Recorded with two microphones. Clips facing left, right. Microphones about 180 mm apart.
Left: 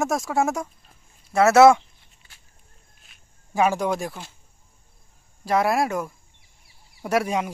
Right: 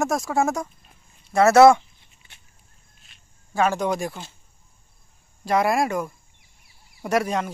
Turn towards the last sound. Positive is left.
turn(degrees=5)  # may be behind; listen again after turning